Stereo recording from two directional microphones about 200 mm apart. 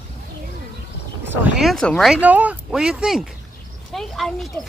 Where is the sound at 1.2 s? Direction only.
10° right (ahead or behind).